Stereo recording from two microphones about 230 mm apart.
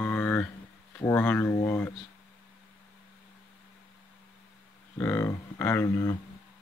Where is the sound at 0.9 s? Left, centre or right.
Centre.